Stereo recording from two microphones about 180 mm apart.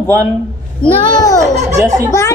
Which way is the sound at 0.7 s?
20° left (ahead or behind).